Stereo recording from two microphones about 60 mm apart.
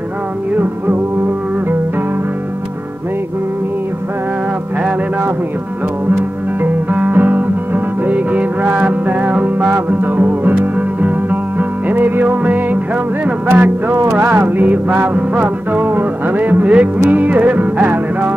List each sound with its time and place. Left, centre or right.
6.1 s music: right
14.1 s a sound: right
14.6 s music: right